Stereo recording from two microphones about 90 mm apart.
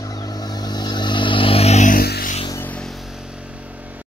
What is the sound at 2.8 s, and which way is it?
Vehicle, centre (ahead or behind).